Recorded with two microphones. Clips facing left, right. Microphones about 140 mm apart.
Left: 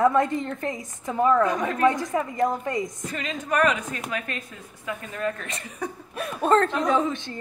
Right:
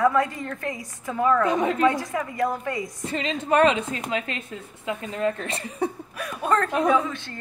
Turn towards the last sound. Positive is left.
turn(degrees=20)  # may be behind; listen again after turning